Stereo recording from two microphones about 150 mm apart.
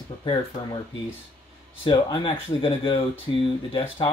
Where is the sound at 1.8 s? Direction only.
35° left (ahead or behind).